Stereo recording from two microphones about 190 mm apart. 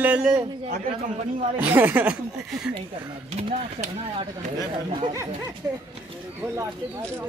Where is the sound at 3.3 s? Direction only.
35° right (ahead or behind).